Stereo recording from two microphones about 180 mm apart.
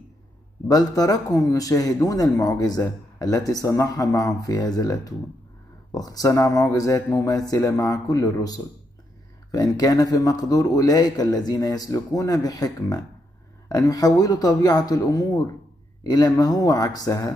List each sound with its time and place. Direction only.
0.7 s a man's voice: 20° left (ahead or behind)